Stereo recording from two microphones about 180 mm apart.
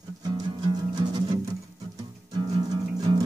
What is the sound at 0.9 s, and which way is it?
Music, 25° right (ahead or behind).